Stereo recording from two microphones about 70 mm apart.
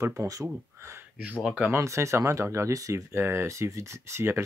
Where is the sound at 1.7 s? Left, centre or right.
Right.